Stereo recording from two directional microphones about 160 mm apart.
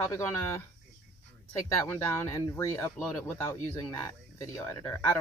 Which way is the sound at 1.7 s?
15° left (ahead or behind).